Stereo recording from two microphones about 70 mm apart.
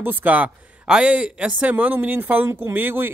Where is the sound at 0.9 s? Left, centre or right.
Centre; by 3.1 s right.